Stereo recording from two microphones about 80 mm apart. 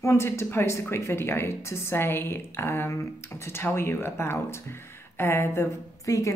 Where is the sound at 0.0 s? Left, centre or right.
Left.